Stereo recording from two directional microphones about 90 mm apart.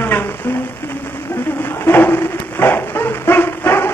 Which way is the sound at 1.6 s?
20° left (ahead or behind).